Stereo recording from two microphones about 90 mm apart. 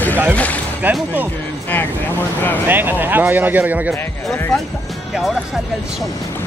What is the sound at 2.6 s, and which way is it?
Speech, 25° right (ahead or behind).